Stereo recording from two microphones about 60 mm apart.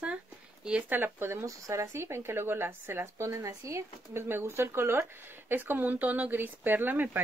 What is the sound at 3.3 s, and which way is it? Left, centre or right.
Speech, right.